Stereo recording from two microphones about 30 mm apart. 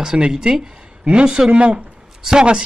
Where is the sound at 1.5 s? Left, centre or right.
Right.